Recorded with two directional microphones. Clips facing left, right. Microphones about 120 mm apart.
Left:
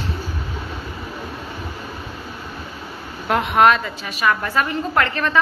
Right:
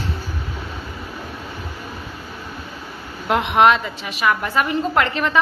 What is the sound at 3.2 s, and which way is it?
A woman's voice, 15° right (ahead or behind).